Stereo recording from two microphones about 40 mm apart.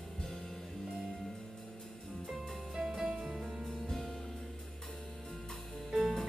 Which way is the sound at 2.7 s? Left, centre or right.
Centre.